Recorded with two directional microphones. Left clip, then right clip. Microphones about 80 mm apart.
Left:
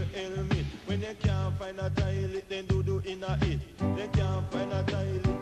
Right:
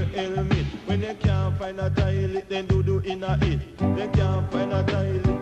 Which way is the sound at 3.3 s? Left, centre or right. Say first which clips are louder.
Right 5 dB; left.